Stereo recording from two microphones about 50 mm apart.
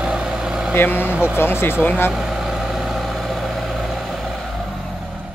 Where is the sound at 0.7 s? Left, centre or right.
Left.